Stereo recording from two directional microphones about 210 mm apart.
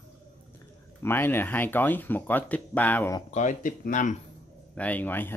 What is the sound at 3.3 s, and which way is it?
Speech, 35° left (ahead or behind).